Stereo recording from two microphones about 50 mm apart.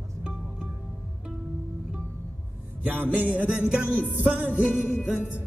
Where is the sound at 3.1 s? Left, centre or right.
Right.